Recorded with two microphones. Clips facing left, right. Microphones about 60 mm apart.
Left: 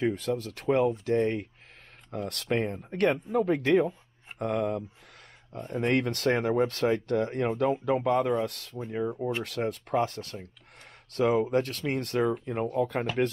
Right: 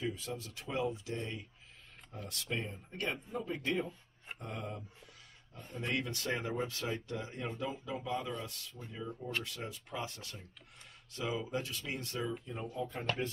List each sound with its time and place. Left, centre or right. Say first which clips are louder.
0.0 s speech: left 11 dB; left